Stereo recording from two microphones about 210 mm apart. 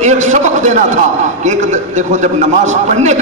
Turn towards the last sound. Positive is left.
turn(degrees=-35)  # may be behind; listen again after turning